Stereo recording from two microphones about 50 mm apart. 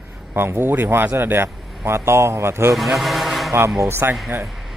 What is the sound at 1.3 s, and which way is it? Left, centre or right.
Speech, right.